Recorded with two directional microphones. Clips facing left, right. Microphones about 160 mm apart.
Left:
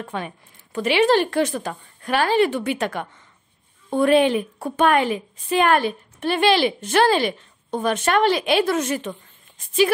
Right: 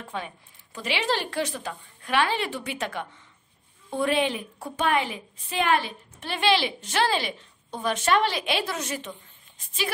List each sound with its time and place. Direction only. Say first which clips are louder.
0.1 s a woman's voice: left 5 dB; 55° left (ahead or behind)